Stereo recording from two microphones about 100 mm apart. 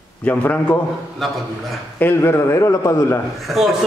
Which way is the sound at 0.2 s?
15° left (ahead or behind).